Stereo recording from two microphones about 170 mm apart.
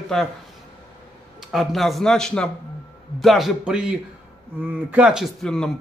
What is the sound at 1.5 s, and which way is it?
Speech, centre (ahead or behind).